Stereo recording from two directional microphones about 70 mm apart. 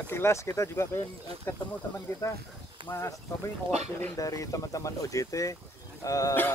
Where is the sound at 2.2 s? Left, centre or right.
Left.